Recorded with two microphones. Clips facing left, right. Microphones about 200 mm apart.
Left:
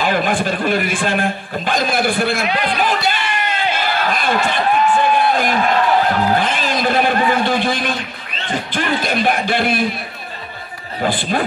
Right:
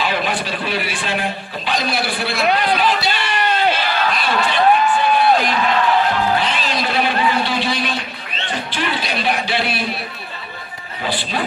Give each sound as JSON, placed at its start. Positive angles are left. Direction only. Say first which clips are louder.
{"t": 0.0, "sound": "a man's voice", "louder": "left 4 dB", "side_deg": 50}
{"t": 2.5, "sound": "a sound", "louder": "right 1 dB", "side_deg": 50}
{"t": 8.5, "sound": "speech", "louder": "left 4 dB", "side_deg": 50}
{"t": 11.0, "sound": "a man's voice", "louder": "left 5 dB", "side_deg": 50}